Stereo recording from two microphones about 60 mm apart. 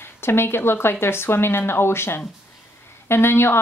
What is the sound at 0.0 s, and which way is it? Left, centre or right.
A woman's voice, left.